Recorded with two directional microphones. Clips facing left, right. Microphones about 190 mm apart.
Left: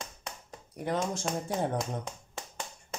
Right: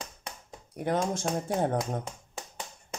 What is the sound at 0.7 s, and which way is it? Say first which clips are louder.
Speech: right 3 dB; 50° right (ahead or behind).